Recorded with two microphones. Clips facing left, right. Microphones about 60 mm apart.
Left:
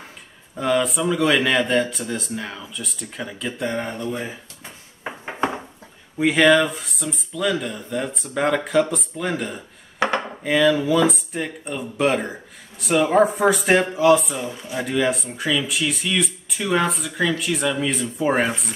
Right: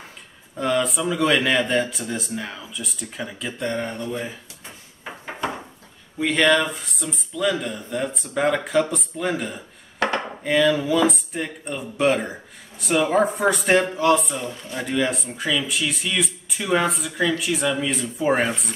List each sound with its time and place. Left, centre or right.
0.6 s speech: centre
5.0 s a sound: left
6.1 s speech: centre